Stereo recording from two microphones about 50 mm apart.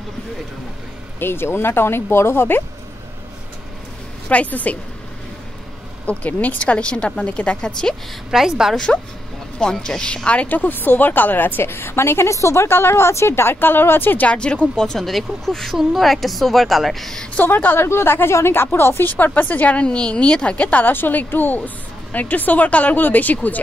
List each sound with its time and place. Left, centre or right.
1.2 s speech: left
4.3 s speech: left
6.0 s speech: left
8.3 s a woman's voice: centre
8.7 s speech: centre; by 12.6 s left
12.6 s speech: left
14.2 s speech: left
14.9 s a woman's voice: centre
17.7 s speech: left
20.8 s speech: left